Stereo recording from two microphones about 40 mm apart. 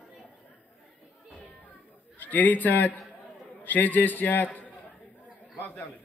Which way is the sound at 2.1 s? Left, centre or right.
Left.